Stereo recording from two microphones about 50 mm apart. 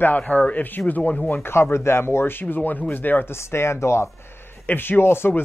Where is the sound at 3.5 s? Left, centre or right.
Left.